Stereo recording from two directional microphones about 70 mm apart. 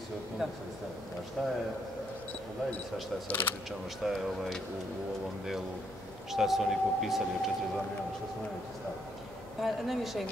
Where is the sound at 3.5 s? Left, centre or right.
Left.